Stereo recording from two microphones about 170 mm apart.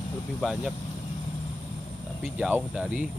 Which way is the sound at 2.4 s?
5° right (ahead or behind).